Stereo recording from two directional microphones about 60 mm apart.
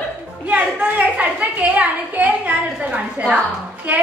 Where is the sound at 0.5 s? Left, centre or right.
Right.